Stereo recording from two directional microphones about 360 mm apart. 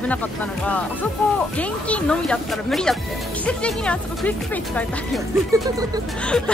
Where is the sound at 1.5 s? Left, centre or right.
Centre.